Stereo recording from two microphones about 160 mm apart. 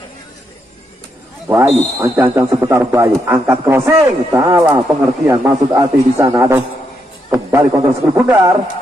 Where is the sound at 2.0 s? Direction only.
15° right (ahead or behind).